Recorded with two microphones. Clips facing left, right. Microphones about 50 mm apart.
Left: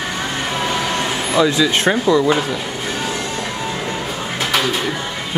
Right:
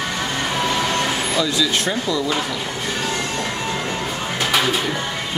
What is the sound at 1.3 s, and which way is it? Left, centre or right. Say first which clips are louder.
Speech: left 8 dB; left.